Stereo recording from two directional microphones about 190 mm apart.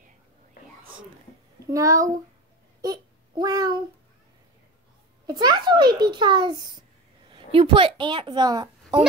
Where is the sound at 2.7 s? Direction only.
20° right (ahead or behind).